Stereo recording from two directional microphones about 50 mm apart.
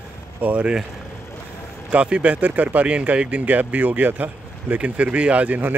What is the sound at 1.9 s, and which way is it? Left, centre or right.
Speech, right.